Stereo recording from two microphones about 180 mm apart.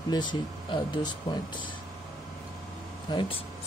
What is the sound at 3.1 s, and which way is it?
Speech, 30° left (ahead or behind).